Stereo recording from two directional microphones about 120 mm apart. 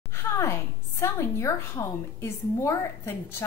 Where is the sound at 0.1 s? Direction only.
20° left (ahead or behind).